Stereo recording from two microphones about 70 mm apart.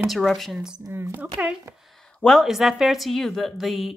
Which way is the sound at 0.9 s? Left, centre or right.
Right.